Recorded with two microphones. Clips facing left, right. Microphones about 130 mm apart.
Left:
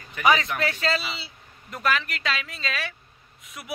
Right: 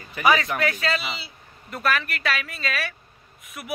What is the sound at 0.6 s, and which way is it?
A man's voice, 30° left (ahead or behind).